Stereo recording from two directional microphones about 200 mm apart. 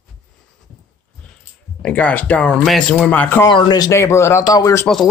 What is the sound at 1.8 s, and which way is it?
Speech, 5° left (ahead or behind).